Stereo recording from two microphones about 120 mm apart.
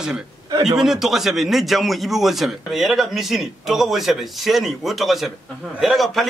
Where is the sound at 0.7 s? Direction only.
5° right (ahead or behind).